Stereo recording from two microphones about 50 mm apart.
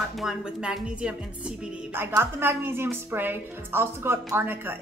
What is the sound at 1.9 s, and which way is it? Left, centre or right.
A woman's voice, right.